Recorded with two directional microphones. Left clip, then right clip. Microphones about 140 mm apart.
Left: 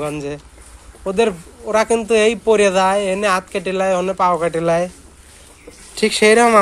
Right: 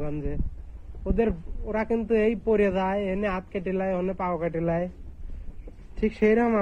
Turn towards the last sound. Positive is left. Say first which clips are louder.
# left 11 dB
turn(degrees=30)  # may be behind; listen again after turning